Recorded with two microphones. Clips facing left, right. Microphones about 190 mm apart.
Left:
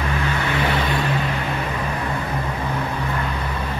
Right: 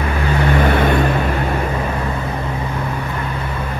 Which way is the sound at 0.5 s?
50° right (ahead or behind).